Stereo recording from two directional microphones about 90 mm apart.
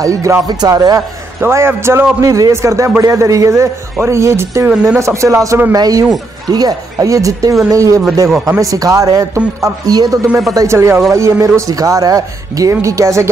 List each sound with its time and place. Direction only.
0.0 s speech: 35° right (ahead or behind)
0.5 s a man's voice: 45° right (ahead or behind)
1.4 s a man's voice: 25° right (ahead or behind)
2.1 s a man's voice: 40° right (ahead or behind)